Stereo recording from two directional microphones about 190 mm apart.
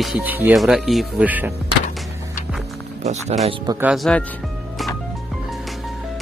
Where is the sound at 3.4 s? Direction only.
20° right (ahead or behind).